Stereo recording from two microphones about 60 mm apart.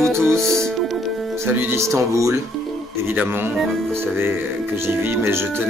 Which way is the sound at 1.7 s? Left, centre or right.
Right.